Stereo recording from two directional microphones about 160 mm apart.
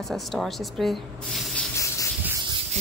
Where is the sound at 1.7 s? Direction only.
20° left (ahead or behind).